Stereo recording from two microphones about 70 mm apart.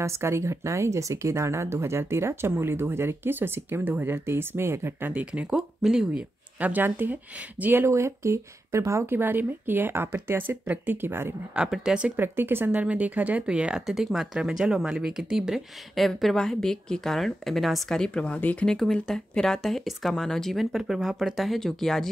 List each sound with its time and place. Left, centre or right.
0.0 s speech: right
5.1 s speech: centre
6.6 s a woman's voice: right
7.8 s speech: right
9.1 s a woman's voice: right
11.5 s speech: centre
12.2 s speech: right; by 15.6 s centre
15.9 s speech: centre; by 18.7 s left
18.7 s speech: centre